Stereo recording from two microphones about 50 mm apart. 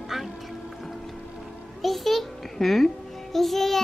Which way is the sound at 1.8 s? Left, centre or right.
Centre.